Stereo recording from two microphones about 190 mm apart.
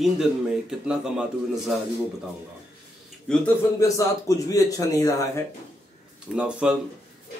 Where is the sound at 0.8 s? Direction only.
5° right (ahead or behind).